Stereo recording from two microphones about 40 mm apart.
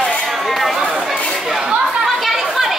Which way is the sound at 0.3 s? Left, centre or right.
Centre.